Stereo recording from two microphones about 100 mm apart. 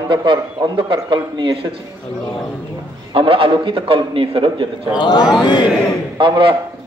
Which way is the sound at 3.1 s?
65° right (ahead or behind).